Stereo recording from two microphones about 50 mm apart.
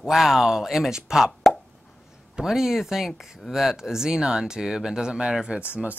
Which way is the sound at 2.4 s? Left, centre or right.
Centre.